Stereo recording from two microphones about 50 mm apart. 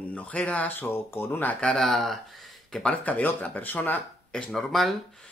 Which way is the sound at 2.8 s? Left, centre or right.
Left.